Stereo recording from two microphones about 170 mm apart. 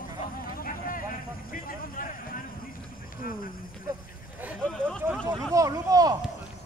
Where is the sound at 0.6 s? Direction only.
55° left (ahead or behind).